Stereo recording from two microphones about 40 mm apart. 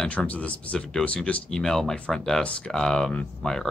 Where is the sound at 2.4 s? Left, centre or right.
Left.